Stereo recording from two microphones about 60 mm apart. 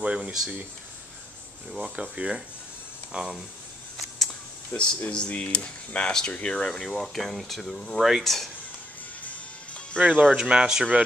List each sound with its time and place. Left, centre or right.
0.0 s speech: centre
1.8 s speech: centre
4.7 s speech: left
5.1 s speech: centre
9.2 s music: left
9.9 s speech: right
10.3 s speech: centre